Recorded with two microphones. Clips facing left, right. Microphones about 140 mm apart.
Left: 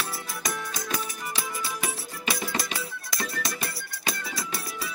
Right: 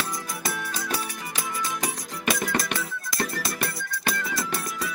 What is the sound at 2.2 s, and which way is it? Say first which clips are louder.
Music: right 5 dB; 55° right (ahead or behind).